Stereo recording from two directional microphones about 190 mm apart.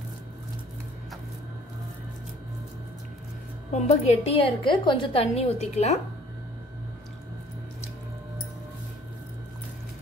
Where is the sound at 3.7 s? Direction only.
35° left (ahead or behind).